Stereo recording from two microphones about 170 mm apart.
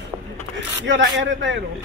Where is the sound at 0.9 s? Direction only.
90° right.